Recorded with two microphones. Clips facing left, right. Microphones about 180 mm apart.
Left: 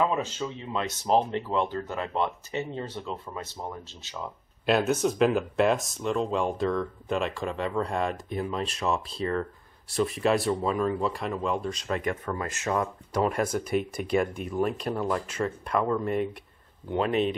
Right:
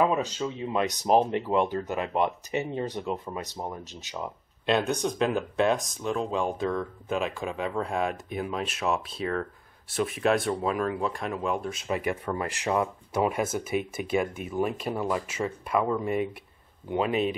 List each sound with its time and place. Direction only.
0.0 s speech: 15° right (ahead or behind)
4.6 s speech: 5° left (ahead or behind)